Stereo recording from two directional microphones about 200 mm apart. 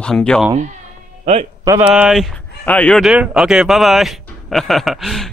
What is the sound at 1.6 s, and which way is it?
Speech, 15° right (ahead or behind).